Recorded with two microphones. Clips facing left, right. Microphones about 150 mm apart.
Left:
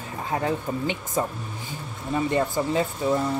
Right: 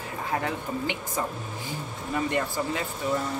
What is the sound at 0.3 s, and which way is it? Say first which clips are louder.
Speech: left 4 dB; 20° left (ahead or behind).